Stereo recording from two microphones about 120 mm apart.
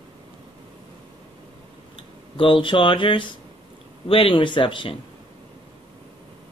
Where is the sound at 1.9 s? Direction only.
45° left (ahead or behind).